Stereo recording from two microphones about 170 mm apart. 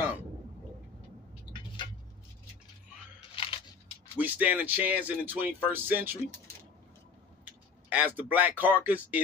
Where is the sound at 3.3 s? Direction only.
30° left (ahead or behind).